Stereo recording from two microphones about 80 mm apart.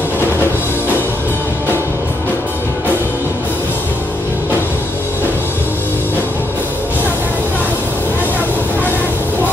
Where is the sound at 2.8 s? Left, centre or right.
Left.